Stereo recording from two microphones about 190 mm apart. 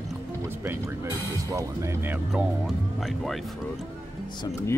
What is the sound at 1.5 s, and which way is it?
Speech, 15° right (ahead or behind).